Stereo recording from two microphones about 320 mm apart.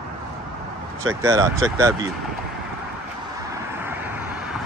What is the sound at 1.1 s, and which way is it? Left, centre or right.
Speech, centre.